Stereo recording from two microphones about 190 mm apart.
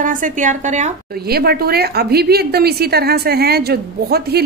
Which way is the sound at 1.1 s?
55° right (ahead or behind).